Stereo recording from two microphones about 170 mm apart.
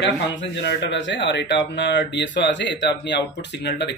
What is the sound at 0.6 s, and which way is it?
Speech, 90° left.